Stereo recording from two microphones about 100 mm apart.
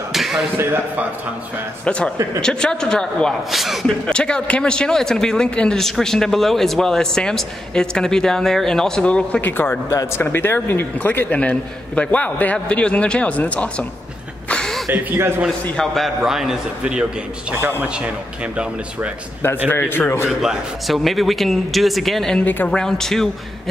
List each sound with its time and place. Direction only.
0.1 s a sound: centre (ahead or behind)
1.9 s a man's voice: 10° left (ahead or behind)
4.0 s a man's voice: 10° left (ahead or behind)
14.5 s a sound: 5° left (ahead or behind)
14.9 s speech: 25° right (ahead or behind)
15.6 s a man's voice: 5° left (ahead or behind); by 19.1 s 10° right (ahead or behind)
19.7 s a man's voice: 20° left (ahead or behind)
20.2 s a man's voice: centre (ahead or behind); by 22.7 s 15° left (ahead or behind)
22.7 s a man's voice: 5° left (ahead or behind)